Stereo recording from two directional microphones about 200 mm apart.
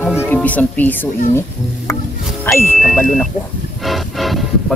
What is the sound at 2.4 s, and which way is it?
Speech, 10° left (ahead or behind).